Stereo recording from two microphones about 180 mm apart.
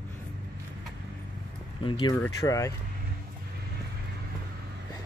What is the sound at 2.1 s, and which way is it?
Speech, 15° left (ahead or behind).